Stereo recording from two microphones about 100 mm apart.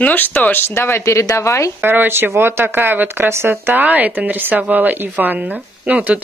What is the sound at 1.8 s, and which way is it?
Speech, 20° right (ahead or behind).